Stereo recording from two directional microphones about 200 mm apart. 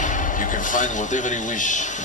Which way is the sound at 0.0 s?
40° left (ahead or behind).